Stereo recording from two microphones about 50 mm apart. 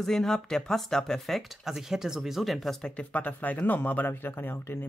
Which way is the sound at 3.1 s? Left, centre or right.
Left.